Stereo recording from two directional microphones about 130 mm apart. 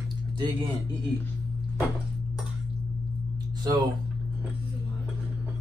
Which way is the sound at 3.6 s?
30° right (ahead or behind).